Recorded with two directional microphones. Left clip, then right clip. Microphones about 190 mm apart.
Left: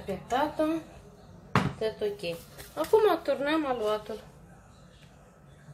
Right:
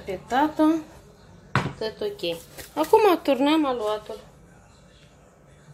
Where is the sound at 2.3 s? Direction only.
35° right (ahead or behind).